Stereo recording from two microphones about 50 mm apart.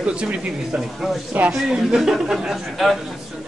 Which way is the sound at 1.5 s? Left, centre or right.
Centre.